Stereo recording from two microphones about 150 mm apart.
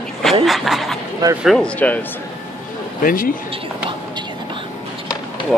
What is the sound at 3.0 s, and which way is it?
Speech, 70° left (ahead or behind).